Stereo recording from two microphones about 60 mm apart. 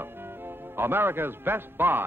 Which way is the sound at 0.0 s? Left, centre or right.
Right.